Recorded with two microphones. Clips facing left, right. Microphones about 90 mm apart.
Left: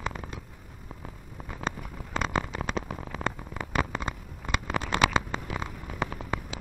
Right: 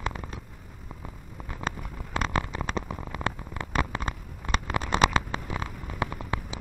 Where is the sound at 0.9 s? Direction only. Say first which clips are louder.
Right 1 dB; centre (ahead or behind).